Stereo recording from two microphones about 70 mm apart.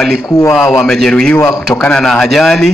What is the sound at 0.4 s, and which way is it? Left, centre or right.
Speech, left.